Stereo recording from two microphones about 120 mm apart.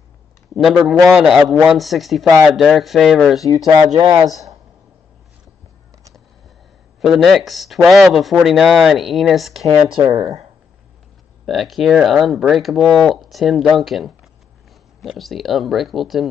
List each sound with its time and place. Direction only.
0.6 s speech: centre (ahead or behind)
3.7 s speech: 35° right (ahead or behind)
7.0 s speech: centre (ahead or behind)
10.0 s speech: 30° right (ahead or behind)
11.4 s speech: centre (ahead or behind)